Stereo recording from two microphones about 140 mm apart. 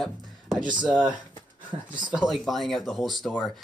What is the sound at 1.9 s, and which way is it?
Speech, 35° right (ahead or behind).